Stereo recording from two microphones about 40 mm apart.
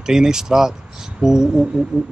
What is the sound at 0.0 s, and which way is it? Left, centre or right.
Speech, centre.